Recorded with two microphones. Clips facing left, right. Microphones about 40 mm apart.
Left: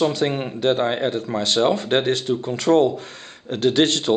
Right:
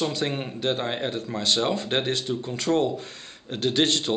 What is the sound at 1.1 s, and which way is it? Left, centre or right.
Speech, left.